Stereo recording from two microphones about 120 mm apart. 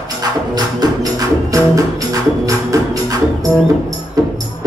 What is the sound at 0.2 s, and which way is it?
Music, 35° right (ahead or behind).